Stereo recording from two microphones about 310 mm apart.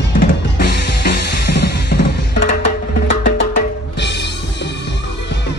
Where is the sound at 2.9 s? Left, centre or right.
Left.